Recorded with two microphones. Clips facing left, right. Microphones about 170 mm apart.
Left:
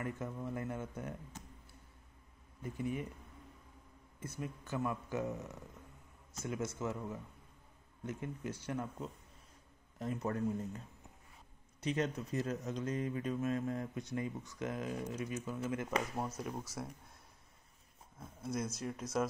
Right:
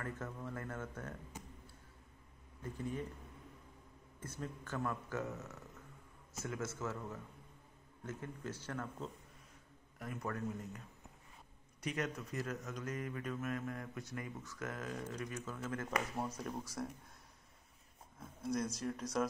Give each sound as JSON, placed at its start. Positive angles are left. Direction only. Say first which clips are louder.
{"t": 0.0, "sound": "speech", "louder": "left 4 dB", "side_deg": 15}
{"t": 2.6, "sound": "speech", "louder": "left 3 dB", "side_deg": 15}
{"t": 4.2, "sound": "speech", "louder": "left 2 dB", "side_deg": 10}
{"t": 11.8, "sound": "speech", "louder": "left 4 dB", "side_deg": 25}
{"t": 18.4, "sound": "speech", "louder": "right 1 dB", "side_deg": 5}